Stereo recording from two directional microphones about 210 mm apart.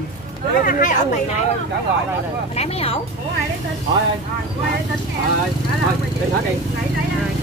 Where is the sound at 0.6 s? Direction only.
40° left (ahead or behind).